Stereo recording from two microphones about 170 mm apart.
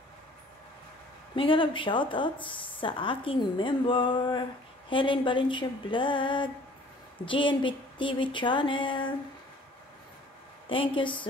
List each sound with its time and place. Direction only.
1.3 s speech: 30° left (ahead or behind)
10.7 s speech: 30° left (ahead or behind)